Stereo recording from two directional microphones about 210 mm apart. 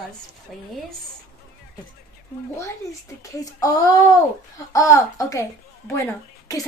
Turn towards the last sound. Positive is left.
turn(degrees=15)  # may be behind; listen again after turning